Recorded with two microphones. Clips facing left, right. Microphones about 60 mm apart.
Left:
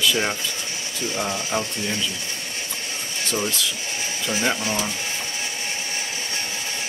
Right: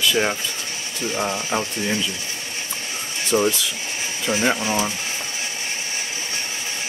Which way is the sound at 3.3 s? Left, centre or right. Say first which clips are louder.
Right 7 dB; centre.